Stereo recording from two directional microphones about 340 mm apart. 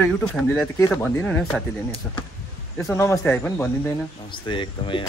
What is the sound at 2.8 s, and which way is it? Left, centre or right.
Speech, centre.